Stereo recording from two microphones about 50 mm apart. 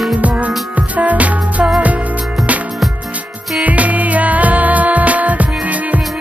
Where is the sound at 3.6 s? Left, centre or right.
Right.